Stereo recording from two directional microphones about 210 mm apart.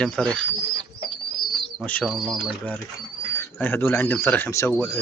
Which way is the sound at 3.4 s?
10° left (ahead or behind).